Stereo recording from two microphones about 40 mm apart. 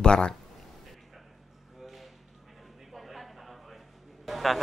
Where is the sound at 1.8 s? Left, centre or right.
Centre.